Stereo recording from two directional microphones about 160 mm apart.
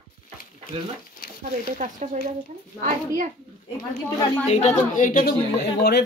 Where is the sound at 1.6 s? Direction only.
50° right (ahead or behind).